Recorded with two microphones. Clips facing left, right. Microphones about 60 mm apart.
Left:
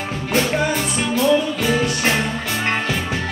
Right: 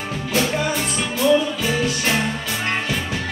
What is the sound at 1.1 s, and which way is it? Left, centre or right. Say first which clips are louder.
Music: even; left.